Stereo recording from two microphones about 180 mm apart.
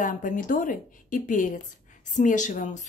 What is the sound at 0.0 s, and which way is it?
Speech, 45° left (ahead or behind).